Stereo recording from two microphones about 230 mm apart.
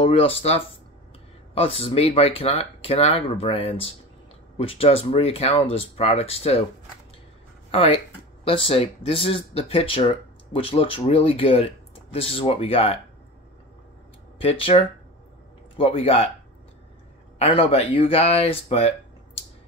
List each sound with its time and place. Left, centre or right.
0.0 s speech: left
8.5 s speech: left
14.4 s speech: left
17.4 s speech: left